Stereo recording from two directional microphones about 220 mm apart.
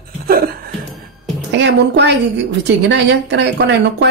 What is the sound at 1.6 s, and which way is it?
Speech, 50° right (ahead or behind).